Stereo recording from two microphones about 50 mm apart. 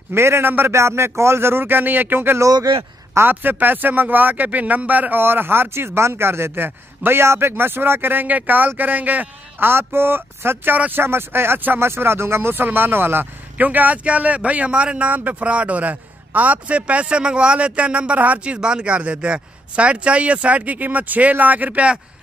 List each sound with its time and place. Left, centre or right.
0.1 s a man's voice: right
2.3 s speech: right
3.2 s speech: right
5.2 s speech: right
13.6 s speech: right